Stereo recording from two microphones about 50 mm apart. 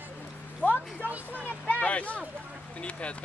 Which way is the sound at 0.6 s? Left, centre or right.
Right.